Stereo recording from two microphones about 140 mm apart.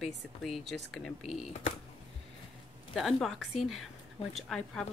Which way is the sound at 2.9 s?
Centre (ahead or behind).